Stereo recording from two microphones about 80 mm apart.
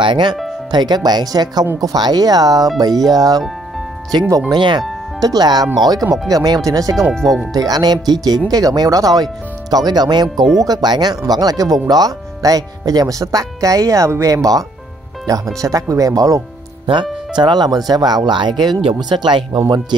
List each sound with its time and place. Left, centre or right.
0.0 s speech: right
0.7 s speech: right
4.5 s speech: right
5.2 s speech: right
15.6 s speech: right
16.8 s speech: right